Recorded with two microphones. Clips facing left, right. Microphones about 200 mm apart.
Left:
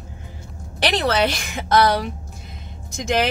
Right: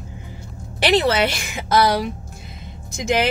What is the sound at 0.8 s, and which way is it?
Speech, 5° right (ahead or behind).